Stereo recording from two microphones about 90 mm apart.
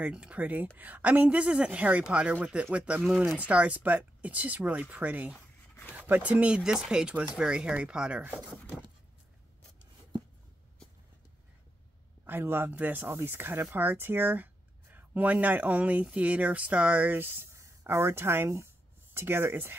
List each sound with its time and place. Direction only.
0.0 s speech: 10° right (ahead or behind)
12.3 s speech: 25° right (ahead or behind)